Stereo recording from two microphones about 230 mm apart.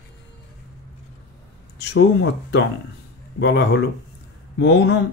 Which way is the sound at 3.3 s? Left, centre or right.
Left.